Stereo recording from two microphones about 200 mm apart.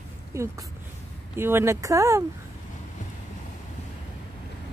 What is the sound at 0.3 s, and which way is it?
Speech, 15° right (ahead or behind).